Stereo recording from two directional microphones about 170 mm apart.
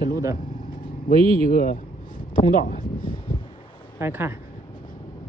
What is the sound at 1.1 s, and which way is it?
Speech, 35° right (ahead or behind).